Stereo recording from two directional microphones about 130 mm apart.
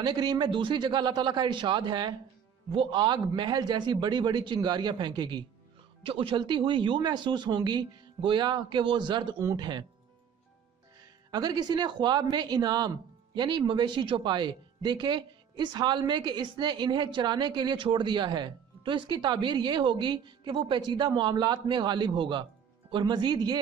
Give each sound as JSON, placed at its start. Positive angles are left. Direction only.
{"t": 0.0, "sound": "a woman's voice", "side_deg": -35}
{"t": 11.2, "sound": "a woman's voice", "side_deg": -30}